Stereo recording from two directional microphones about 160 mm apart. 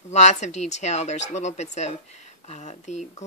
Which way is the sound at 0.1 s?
45° left (ahead or behind).